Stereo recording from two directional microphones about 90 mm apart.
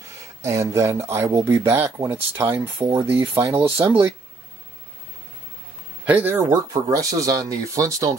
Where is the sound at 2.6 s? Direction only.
50° right (ahead or behind).